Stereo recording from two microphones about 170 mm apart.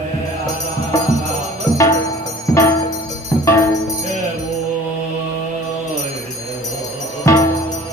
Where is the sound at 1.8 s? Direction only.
20° left (ahead or behind).